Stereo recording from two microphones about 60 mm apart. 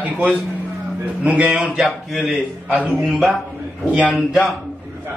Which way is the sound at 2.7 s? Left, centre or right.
Right.